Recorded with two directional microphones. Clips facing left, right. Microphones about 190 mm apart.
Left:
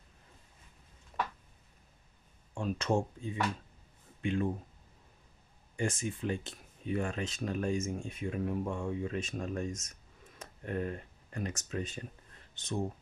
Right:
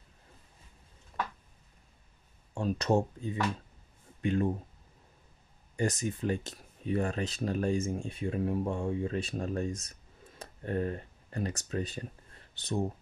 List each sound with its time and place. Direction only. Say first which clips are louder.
2.5 s speech: right 3 dB; 40° right (ahead or behind)
5.8 s speech: right 3 dB; 40° right (ahead or behind)